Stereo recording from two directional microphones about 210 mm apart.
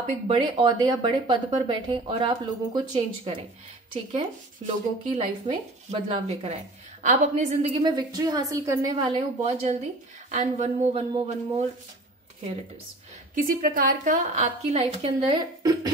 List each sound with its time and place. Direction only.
0.0 s speech: 25° right (ahead or behind)
7.8 s a woman's voice: 20° right (ahead or behind)
13.3 s a woman's voice: 45° right (ahead or behind); by 15.7 s 25° right (ahead or behind)